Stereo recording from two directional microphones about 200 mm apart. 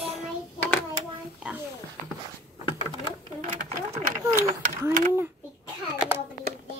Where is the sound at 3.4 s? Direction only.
35° right (ahead or behind).